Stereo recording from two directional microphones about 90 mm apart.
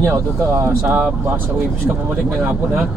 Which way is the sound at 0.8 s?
15° right (ahead or behind).